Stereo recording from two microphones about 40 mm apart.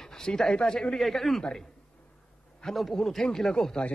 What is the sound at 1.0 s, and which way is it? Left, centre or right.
Speech, centre.